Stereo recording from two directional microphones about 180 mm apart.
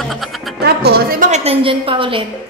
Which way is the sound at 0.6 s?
65° right (ahead or behind).